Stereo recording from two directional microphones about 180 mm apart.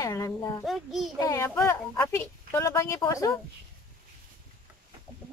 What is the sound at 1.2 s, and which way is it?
A woman's voice, 15° left (ahead or behind).